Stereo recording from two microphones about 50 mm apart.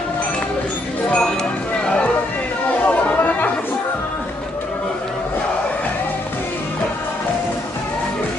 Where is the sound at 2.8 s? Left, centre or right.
Left.